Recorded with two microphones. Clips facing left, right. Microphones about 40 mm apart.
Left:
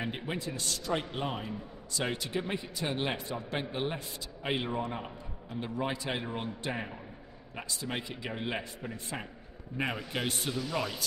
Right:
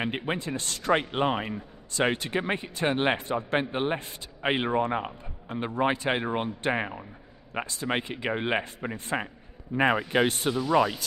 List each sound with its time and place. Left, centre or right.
0.2 s a man's voice: right
9.8 s a man's voice: right
10.2 s speech: right